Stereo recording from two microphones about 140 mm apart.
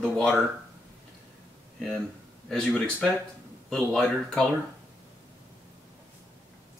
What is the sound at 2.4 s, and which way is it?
Speech, 5° left (ahead or behind).